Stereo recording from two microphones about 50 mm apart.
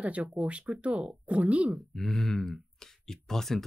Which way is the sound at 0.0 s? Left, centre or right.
Right.